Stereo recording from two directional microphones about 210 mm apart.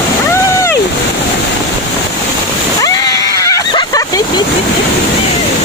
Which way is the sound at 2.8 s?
15° left (ahead or behind).